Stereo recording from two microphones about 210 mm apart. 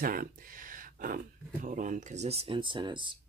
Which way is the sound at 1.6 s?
35° right (ahead or behind).